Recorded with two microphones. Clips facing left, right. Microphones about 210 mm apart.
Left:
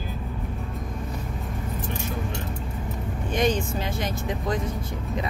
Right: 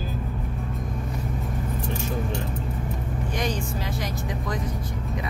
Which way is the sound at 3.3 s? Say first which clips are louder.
Left 6 dB; 25° left (ahead or behind).